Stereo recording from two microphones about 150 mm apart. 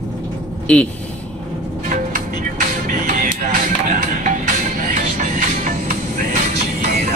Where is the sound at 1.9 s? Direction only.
65° right (ahead or behind).